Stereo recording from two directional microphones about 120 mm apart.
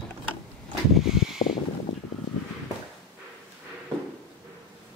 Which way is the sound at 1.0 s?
5° right (ahead or behind).